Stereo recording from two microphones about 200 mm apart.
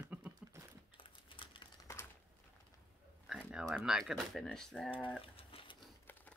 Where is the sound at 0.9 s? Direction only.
25° left (ahead or behind).